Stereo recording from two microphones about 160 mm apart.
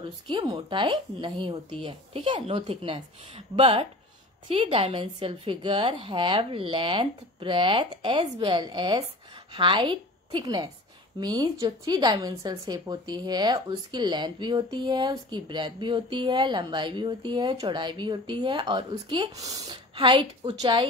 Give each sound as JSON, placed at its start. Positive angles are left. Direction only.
{"t": 0.3, "sound": "a woman's voice", "side_deg": -25}